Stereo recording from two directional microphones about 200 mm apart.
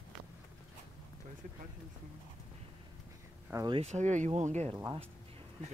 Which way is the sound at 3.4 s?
15° right (ahead or behind).